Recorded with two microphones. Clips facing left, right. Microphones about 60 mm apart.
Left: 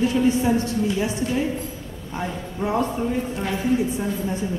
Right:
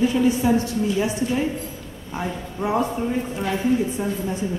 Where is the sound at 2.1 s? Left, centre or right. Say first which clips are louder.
Right 1 dB; centre.